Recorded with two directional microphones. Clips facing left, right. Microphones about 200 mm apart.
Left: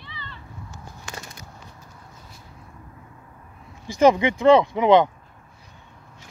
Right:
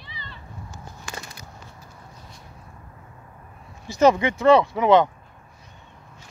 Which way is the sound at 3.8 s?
15° left (ahead or behind).